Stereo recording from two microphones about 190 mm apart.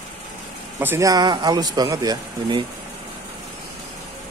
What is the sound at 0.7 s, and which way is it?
Speech, 15° right (ahead or behind).